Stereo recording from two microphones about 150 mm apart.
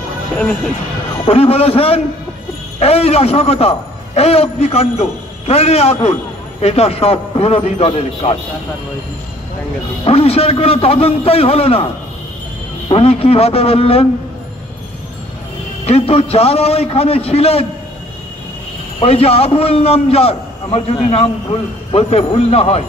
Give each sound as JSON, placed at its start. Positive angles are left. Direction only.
{"t": 1.2, "sound": "a man's voice", "side_deg": 40}
{"t": 10.0, "sound": "a man's voice", "side_deg": 40}
{"t": 12.9, "sound": "a man's voice", "side_deg": 40}
{"t": 15.8, "sound": "a man's voice", "side_deg": 40}
{"t": 18.9, "sound": "a man's voice", "side_deg": 40}